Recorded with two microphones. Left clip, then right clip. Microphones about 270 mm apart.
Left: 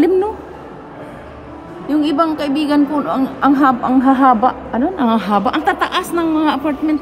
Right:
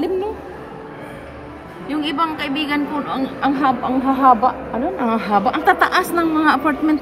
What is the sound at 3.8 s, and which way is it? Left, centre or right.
A woman's voice, left.